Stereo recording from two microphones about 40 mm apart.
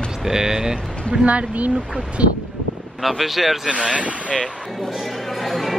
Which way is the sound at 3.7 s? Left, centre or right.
Right.